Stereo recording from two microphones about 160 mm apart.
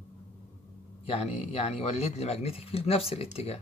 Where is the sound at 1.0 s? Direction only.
35° left (ahead or behind).